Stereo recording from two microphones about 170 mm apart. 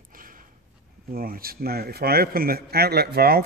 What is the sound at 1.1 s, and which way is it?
A man's voice, 60° right (ahead or behind).